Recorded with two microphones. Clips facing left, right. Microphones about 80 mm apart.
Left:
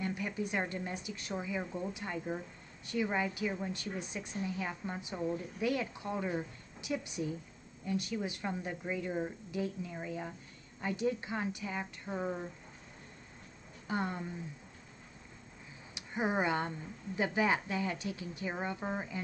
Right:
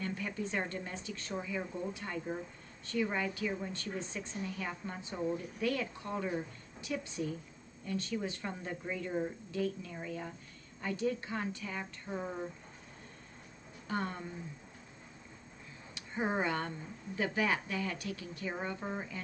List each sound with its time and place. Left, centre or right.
0.0 s a woman's voice: centre
12.2 s speech: centre
13.8 s a woman's voice: centre
15.9 s a woman's voice: centre